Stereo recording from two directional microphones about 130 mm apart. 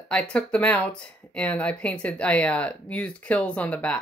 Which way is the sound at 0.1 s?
10° left (ahead or behind).